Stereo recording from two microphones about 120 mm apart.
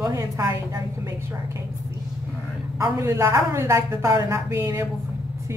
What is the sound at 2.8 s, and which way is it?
Speech, 25° right (ahead or behind).